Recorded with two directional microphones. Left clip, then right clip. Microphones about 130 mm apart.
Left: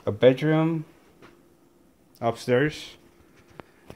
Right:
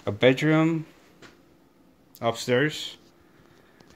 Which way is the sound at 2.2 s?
15° left (ahead or behind).